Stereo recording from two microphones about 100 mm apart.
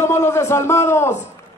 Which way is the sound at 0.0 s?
25° left (ahead or behind).